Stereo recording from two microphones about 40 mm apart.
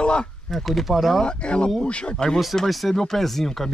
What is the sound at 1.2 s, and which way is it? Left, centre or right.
Speech, left.